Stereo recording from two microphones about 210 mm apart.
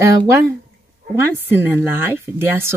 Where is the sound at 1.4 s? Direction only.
10° right (ahead or behind).